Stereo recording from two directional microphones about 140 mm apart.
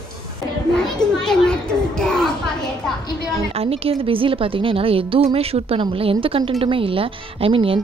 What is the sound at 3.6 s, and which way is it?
Speech, 45° right (ahead or behind).